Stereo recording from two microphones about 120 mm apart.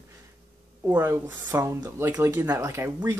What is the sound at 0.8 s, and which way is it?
Speech, 20° right (ahead or behind).